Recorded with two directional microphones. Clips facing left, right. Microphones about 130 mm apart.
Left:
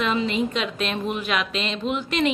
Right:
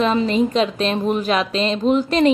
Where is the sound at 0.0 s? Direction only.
40° right (ahead or behind).